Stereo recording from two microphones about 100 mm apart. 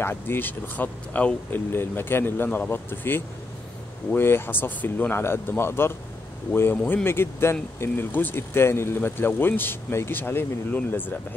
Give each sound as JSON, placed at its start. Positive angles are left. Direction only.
{"t": 0.0, "sound": "speech", "side_deg": 20}